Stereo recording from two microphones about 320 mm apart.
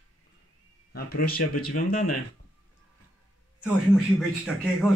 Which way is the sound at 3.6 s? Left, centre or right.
Centre.